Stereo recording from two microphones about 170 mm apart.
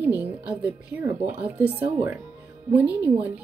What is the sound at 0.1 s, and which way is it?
A woman's voice, 10° right (ahead or behind).